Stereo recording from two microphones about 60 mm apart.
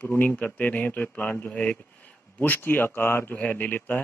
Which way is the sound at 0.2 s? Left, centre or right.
Left.